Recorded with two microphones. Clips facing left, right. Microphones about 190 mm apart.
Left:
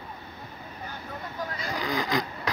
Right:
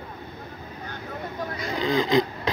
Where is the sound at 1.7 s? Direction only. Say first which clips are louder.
Right 7 dB; 25° right (ahead or behind).